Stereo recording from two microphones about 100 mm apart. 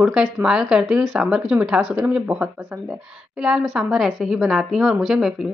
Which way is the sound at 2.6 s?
25° right (ahead or behind).